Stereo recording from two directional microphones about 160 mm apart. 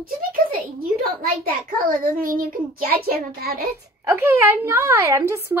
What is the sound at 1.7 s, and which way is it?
A child's voice, 60° right (ahead or behind).